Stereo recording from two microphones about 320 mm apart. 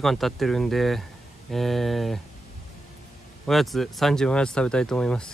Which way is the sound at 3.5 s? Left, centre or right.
Centre.